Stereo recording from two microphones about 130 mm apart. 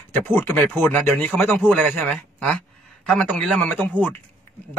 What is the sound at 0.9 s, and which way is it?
Speech, 10° left (ahead or behind).